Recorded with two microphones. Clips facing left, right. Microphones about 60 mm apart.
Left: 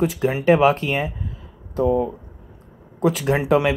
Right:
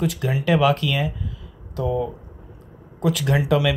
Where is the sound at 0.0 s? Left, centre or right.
Left.